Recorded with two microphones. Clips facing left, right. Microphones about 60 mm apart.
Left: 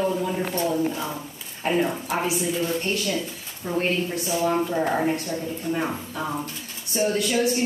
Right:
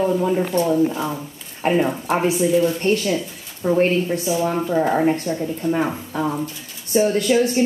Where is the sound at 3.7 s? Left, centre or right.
Right.